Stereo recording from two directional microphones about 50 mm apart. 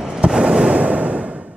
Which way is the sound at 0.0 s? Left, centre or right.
Centre.